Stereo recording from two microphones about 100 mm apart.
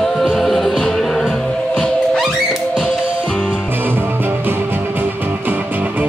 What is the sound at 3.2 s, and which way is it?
Music, 10° left (ahead or behind).